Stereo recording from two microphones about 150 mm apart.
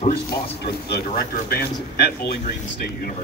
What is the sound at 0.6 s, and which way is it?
Speech, 90° left.